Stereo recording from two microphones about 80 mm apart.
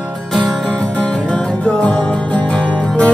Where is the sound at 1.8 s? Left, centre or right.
Centre.